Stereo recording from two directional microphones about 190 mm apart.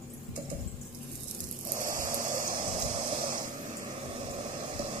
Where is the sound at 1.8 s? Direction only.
45° right (ahead or behind).